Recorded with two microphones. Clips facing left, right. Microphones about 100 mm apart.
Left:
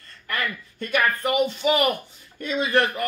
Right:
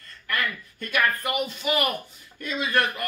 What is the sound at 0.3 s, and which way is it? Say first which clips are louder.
Speech: even; 35° left (ahead or behind).